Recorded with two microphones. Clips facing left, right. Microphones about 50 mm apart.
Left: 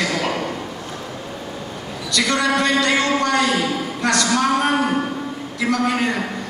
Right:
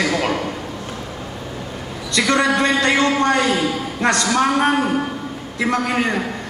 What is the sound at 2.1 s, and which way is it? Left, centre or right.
A man's voice, right.